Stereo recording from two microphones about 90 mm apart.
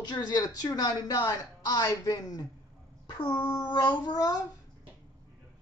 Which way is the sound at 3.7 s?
55° left (ahead or behind).